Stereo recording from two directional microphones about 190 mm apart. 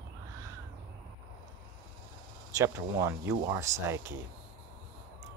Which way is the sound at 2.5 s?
15° right (ahead or behind).